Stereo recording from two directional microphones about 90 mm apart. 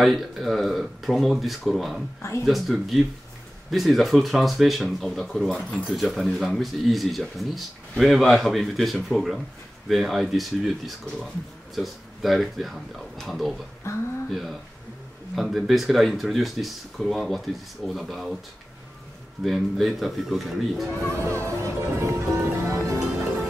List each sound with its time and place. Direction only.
0.0 s speech: centre (ahead or behind)
19.4 s speech: centre (ahead or behind)
21.2 s music: 30° right (ahead or behind)